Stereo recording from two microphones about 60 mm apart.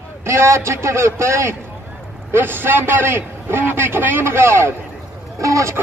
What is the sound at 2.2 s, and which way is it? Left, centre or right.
A man's voice, right.